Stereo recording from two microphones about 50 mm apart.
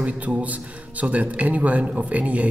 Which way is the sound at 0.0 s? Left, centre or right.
Right.